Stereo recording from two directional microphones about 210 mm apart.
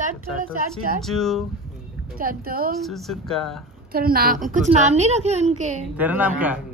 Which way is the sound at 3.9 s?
45° right (ahead or behind).